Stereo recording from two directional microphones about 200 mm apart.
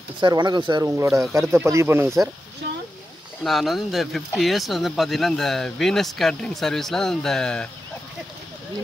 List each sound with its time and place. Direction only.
0.2 s speech: 20° right (ahead or behind)
3.4 s speech: centre (ahead or behind)